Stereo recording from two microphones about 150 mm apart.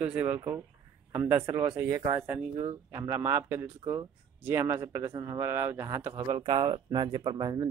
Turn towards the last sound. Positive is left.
turn(degrees=-25)  # may be behind; listen again after turning